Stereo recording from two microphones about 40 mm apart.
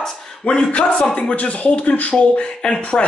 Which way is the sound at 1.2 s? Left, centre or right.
Left.